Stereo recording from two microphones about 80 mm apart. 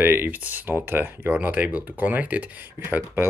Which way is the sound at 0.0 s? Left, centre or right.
Right.